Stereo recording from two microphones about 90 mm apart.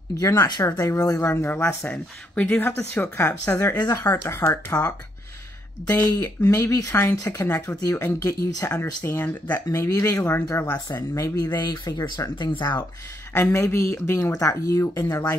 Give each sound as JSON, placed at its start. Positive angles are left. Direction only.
{"t": 0.1, "sound": "speech", "side_deg": 35}
{"t": 1.3, "sound": "speech", "side_deg": 25}
{"t": 3.7, "sound": "speech", "side_deg": 45}
{"t": 4.0, "sound": "speech", "side_deg": 30}
{"t": 6.2, "sound": "speech", "side_deg": 25}
{"t": 12.4, "sound": "speech", "side_deg": 60}
{"t": 13.3, "sound": "speech", "side_deg": 25}